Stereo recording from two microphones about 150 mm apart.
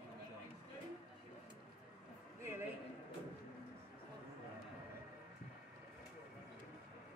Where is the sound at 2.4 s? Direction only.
15° right (ahead or behind).